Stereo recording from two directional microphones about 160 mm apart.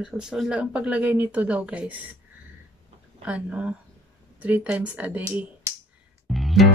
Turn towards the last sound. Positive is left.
turn(degrees=0)  # may be behind; listen again after turning